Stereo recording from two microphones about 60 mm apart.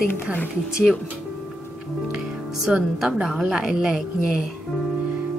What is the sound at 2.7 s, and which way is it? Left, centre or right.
A woman's voice, centre.